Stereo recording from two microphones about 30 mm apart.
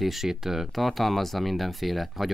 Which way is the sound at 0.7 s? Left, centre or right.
Centre.